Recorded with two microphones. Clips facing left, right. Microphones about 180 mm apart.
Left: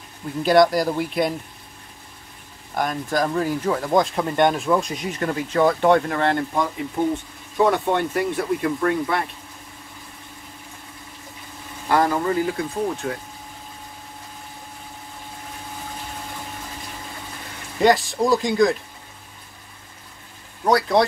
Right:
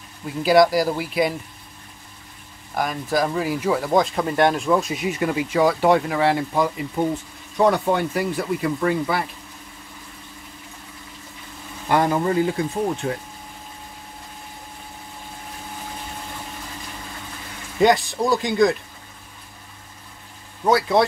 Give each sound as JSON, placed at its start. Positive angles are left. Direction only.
{"t": 0.4, "sound": "speech", "side_deg": -5}
{"t": 2.7, "sound": "speech", "side_deg": 0}
{"t": 11.9, "sound": "speech", "side_deg": -20}
{"t": 17.7, "sound": "speech", "side_deg": 0}
{"t": 20.6, "sound": "speech", "side_deg": 0}